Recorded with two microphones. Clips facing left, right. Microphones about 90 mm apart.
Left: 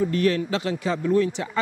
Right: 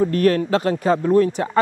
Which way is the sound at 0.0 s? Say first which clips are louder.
Right 5 dB; 45° right (ahead or behind).